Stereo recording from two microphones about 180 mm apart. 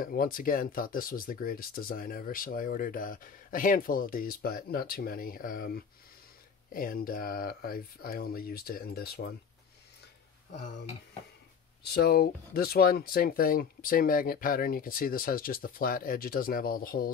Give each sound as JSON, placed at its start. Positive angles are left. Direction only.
{"t": 0.0, "sound": "speech", "side_deg": 50}
{"t": 11.8, "sound": "speech", "side_deg": 60}